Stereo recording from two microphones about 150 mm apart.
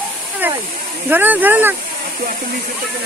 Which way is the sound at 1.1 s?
10° right (ahead or behind).